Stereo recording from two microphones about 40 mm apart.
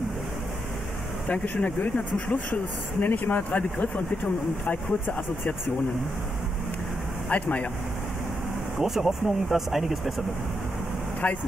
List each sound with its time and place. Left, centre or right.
1.2 s speech: left
7.2 s speech: left
8.7 s speech: centre
11.2 s speech: left